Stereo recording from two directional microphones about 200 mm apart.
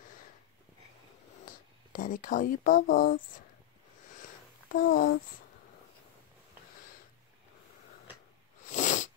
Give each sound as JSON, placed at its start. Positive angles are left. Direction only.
{"t": 1.4, "sound": "speech", "side_deg": 45}
{"t": 4.2, "sound": "a sound", "side_deg": 45}
{"t": 8.6, "sound": "sneeze", "side_deg": 35}